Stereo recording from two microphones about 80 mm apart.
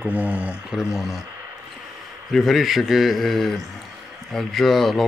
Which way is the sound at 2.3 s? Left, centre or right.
Centre.